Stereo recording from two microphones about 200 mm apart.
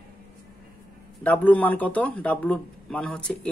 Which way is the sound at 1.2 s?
10° left (ahead or behind).